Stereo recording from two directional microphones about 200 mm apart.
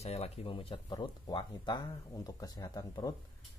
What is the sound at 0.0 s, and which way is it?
Speech, 30° left (ahead or behind).